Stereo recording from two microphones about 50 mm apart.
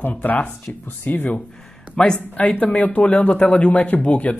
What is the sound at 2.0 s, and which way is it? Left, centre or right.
Speech, centre.